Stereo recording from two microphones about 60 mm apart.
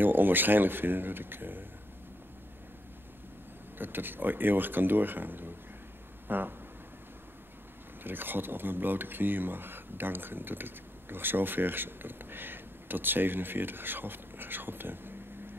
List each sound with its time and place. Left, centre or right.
0.0 s speech: right
3.7 s speech: right
8.0 s speech: right